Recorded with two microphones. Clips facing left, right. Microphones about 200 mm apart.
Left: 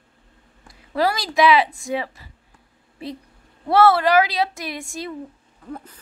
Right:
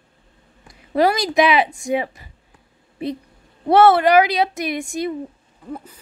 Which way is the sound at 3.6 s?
20° right (ahead or behind).